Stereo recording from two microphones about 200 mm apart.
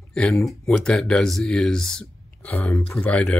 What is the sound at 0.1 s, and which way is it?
Speech, 5° left (ahead or behind).